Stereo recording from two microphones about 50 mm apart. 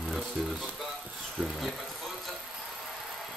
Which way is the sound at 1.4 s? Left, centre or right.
Centre.